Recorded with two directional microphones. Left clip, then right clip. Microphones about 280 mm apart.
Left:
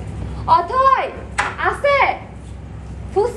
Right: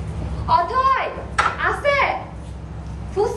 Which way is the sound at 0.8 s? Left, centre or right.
Centre.